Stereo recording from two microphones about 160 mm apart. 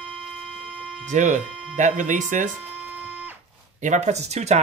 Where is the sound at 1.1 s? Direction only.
50° right (ahead or behind).